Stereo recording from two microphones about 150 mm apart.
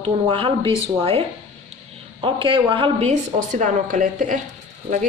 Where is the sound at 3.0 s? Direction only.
60° right (ahead or behind).